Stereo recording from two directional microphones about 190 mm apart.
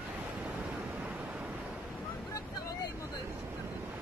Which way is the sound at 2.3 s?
15° left (ahead or behind).